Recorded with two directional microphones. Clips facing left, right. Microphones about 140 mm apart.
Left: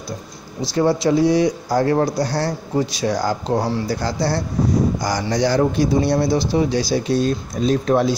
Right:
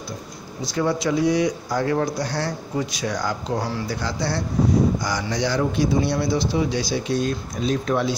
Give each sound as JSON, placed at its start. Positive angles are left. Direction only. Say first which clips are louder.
{"t": 0.6, "sound": "speech", "louder": "left 5 dB", "side_deg": 35}